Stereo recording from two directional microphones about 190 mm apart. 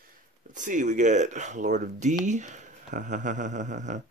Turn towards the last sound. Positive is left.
turn(degrees=-40)  # may be behind; listen again after turning